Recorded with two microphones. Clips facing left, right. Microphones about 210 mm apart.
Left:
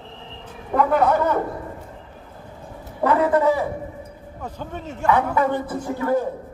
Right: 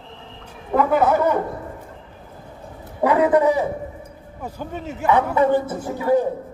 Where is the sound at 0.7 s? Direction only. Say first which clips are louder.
Right 1 dB; centre (ahead or behind).